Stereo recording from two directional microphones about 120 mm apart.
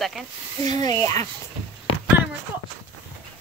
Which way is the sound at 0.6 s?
30° left (ahead or behind).